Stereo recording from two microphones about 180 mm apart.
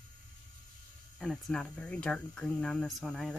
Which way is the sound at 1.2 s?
Centre (ahead or behind).